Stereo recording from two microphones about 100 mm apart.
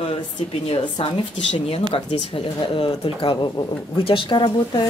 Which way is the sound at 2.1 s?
65° left (ahead or behind).